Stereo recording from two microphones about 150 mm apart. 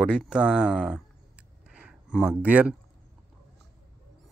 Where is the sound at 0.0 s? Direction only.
5° right (ahead or behind).